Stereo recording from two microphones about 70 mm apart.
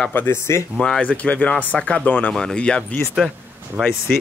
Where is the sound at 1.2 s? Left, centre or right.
Left.